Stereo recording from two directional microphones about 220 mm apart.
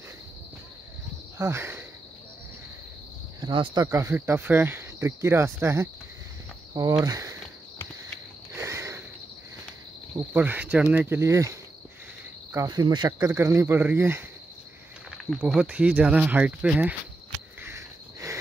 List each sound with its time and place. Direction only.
1.4 s cricket: 10° right (ahead or behind)
3.3 s speech: 20° right (ahead or behind)
8.5 s sniff: 15° right (ahead or behind)
10.1 s speech: 10° right (ahead or behind)
12.5 s speech: 15° right (ahead or behind)
17.6 s cricket: 15° right (ahead or behind)